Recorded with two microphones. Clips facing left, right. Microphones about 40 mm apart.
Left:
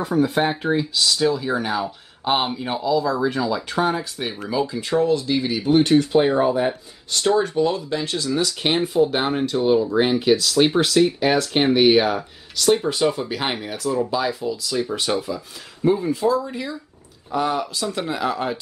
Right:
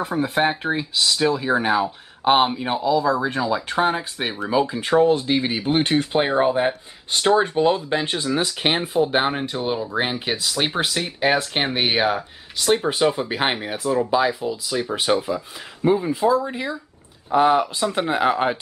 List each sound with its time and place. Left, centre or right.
0.0 s speech: right